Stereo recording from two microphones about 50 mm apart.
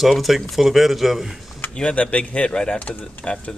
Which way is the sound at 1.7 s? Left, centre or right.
Left.